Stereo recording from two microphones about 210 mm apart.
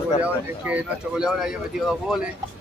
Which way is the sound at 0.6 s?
5° right (ahead or behind).